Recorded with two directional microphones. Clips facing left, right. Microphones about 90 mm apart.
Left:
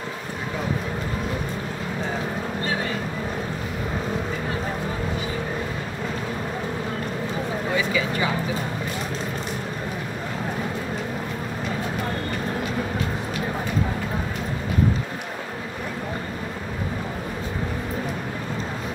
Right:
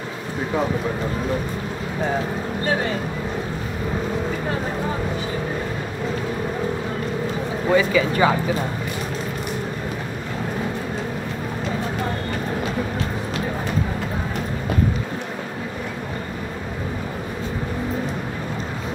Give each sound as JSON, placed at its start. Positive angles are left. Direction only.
{"t": 7.7, "sound": "speech", "side_deg": -50}